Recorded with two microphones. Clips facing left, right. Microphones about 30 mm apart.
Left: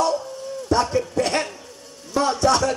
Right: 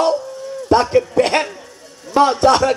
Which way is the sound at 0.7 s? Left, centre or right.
Right.